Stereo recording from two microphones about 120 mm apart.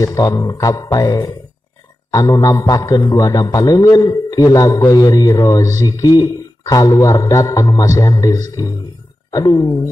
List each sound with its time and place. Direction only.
0.0 s a man's voice: 30° left (ahead or behind)